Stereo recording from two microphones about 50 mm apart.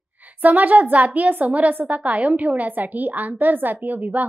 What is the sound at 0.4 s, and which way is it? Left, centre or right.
A woman's voice, right.